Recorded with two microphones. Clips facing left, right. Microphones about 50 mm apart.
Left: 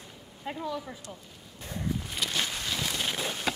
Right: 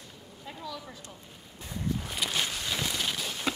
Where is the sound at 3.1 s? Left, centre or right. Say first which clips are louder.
Left 3 dB; left.